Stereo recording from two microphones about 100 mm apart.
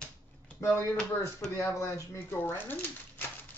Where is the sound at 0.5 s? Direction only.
25° left (ahead or behind).